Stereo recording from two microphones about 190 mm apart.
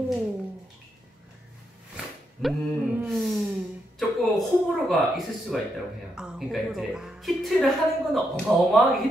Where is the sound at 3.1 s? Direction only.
Centre (ahead or behind).